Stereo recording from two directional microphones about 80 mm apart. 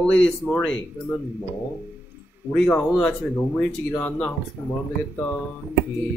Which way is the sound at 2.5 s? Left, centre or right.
Centre.